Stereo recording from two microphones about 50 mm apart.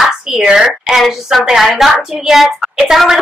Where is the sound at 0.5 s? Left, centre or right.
Centre.